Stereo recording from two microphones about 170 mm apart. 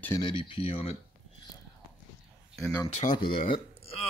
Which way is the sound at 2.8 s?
45° left (ahead or behind).